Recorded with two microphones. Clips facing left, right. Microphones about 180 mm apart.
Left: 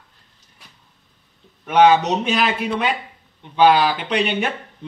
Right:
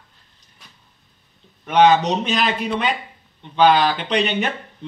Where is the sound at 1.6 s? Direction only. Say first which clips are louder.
Left 1 dB; 10° left (ahead or behind).